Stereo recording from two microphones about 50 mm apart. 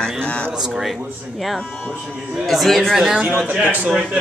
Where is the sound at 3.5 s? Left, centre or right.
Right.